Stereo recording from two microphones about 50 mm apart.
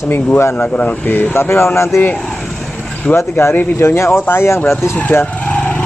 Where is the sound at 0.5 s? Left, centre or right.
Left.